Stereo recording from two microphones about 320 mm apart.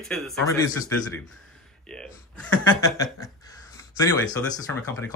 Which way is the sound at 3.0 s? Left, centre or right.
Centre.